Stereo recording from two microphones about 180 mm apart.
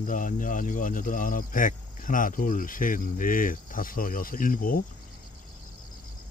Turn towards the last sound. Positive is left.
turn(degrees=50)  # may be behind; listen again after turning